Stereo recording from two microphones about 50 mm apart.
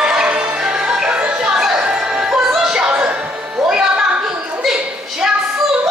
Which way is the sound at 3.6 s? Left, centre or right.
Centre.